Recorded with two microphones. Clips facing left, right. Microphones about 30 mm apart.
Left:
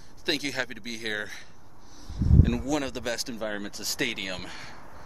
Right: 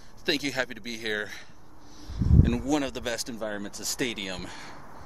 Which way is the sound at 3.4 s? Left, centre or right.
Left.